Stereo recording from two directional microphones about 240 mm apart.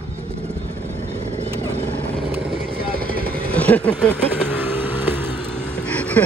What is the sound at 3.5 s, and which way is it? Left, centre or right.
Speech, centre.